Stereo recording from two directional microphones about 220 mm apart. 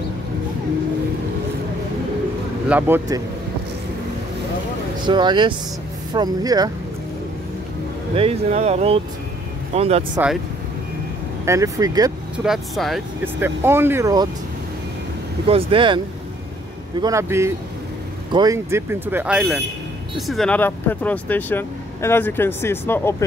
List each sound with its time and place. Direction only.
2.7 s speech: 10° right (ahead or behind)
5.0 s speech: 20° right (ahead or behind)
8.1 s speech: 25° right (ahead or behind)
11.4 s speech: 15° right (ahead or behind)
12.4 s speech: centre (ahead or behind); by 14.3 s 15° right (ahead or behind)
15.4 s speech: 25° right (ahead or behind)
17.0 s speech: 15° right (ahead or behind); by 23.1 s 10° left (ahead or behind)